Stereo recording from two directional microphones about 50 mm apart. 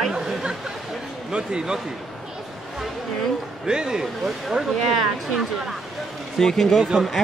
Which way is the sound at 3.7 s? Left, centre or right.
Centre.